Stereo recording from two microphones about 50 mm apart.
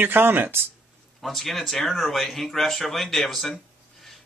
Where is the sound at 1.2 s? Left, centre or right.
Centre.